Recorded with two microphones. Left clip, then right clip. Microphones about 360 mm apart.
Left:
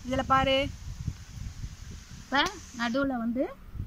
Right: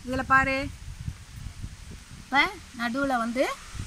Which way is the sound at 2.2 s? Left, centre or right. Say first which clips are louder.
Right 4 dB; centre.